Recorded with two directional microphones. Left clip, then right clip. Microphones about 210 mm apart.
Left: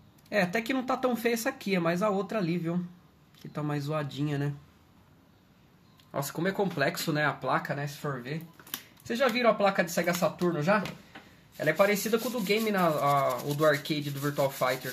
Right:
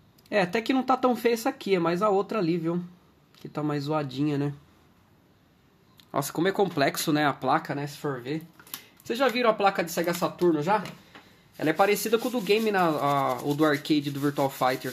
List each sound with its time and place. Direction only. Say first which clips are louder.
0.3 s speech: right 3 dB; 40° right (ahead or behind)
6.1 s speech: right 5 dB; 50° right (ahead or behind)